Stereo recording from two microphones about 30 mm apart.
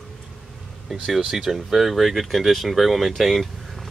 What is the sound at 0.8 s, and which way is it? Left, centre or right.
Speech, centre.